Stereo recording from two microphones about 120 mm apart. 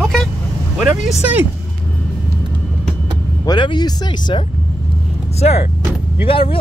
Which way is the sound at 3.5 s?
40° left (ahead or behind).